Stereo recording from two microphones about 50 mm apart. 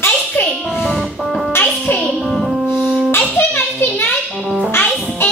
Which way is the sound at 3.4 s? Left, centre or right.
Left.